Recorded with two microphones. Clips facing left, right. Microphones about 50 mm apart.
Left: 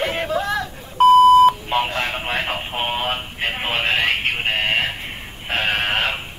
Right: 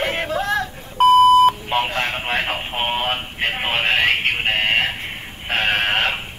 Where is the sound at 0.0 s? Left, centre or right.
Centre.